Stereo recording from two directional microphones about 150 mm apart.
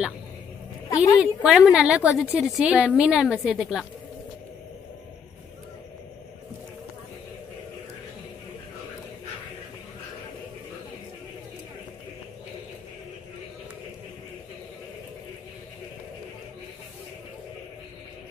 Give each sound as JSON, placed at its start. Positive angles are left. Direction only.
{"t": 0.8, "sound": "a woman's voice", "side_deg": 25}
{"t": 1.2, "sound": "a woman's voice", "side_deg": -5}